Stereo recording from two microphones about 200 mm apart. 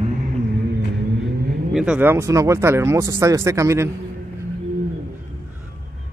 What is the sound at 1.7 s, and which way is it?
Speech, 5° right (ahead or behind).